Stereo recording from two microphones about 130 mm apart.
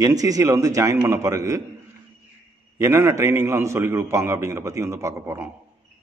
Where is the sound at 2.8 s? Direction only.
20° right (ahead or behind).